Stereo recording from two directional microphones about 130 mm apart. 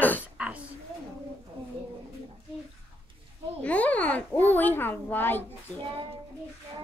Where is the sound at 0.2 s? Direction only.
10° right (ahead or behind).